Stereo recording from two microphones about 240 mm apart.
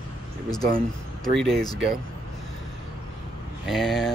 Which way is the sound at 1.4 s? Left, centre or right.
Centre.